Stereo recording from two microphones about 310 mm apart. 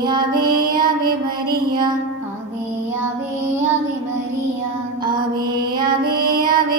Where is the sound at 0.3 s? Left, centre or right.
Right.